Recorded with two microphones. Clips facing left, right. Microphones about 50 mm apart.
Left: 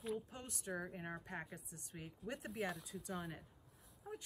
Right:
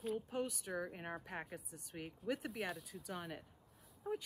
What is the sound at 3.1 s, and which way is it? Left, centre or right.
Speech, right.